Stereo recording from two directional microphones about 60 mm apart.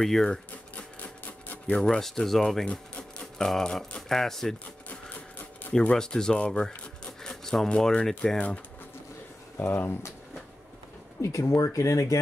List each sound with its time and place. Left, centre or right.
0.0 s speech: centre
0.7 s a sound: left
1.8 s speech: centre
4.8 s printer: left
5.7 s speech: centre
9.6 s speech: left
11.1 s speech: left